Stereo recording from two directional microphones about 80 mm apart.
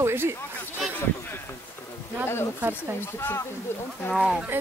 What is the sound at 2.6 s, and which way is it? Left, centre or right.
Speech, right.